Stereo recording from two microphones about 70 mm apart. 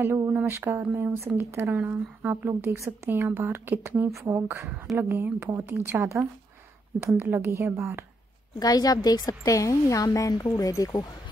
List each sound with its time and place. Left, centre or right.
0.3 s a woman's voice: right
1.7 s a woman's voice: right
8.5 s a woman's voice: left
10.3 s speech: left
10.7 s speech: left